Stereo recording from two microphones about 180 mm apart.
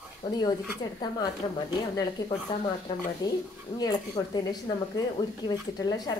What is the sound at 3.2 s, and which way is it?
A woman's voice, 20° left (ahead or behind).